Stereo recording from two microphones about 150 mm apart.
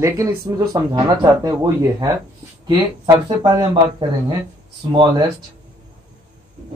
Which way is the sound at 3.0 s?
25° right (ahead or behind).